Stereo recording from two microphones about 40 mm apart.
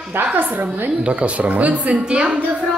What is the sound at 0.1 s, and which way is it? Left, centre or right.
Speech, right.